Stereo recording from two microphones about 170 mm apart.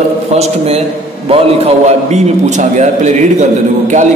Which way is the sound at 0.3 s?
40° right (ahead or behind).